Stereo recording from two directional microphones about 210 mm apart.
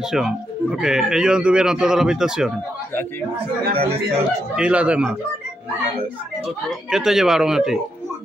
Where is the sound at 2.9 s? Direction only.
10° left (ahead or behind).